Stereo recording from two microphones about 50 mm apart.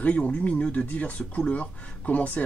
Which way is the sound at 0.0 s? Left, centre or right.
Left.